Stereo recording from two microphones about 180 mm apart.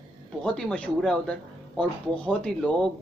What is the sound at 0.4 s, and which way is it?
Speech, 5° left (ahead or behind).